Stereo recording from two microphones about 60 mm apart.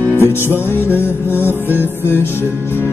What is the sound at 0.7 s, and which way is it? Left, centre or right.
Music, left.